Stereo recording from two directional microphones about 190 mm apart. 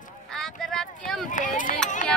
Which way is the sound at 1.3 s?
45° left (ahead or behind).